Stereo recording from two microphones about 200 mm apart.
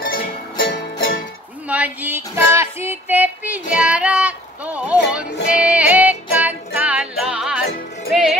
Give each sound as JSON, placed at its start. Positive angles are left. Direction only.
{"t": 0.1, "sound": "music", "side_deg": 45}
{"t": 1.7, "sound": "female singing", "side_deg": -10}
{"t": 5.6, "sound": "music", "side_deg": -5}